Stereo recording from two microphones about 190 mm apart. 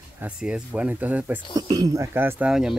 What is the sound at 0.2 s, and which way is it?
Speech, 5° right (ahead or behind).